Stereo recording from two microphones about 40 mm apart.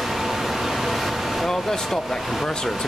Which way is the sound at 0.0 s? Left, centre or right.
Centre.